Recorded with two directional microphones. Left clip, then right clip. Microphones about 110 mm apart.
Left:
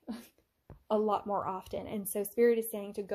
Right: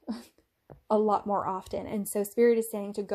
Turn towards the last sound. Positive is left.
turn(degrees=-25)  # may be behind; listen again after turning